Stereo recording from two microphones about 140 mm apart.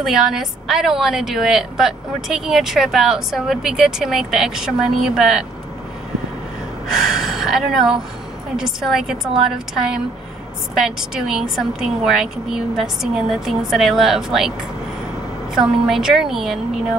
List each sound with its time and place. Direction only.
0.0 s a woman's voice: 5° right (ahead or behind)
6.9 s a woman's voice: 5° right (ahead or behind)
15.5 s a woman's voice: 5° right (ahead or behind)